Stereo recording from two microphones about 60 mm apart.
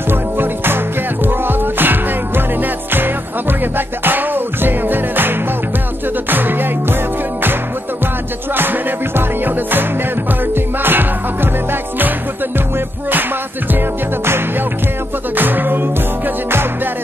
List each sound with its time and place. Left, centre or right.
0.1 s music: right
6.3 s music: right
8.5 s music: right
13.7 s music: right